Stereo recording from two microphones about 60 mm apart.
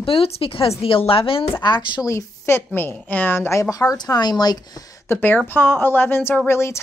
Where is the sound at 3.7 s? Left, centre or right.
Left.